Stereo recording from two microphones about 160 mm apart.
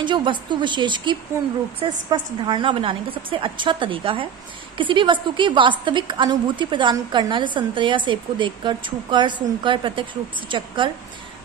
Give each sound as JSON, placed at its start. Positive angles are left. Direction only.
{"t": 0.0, "sound": "a woman's voice", "side_deg": -30}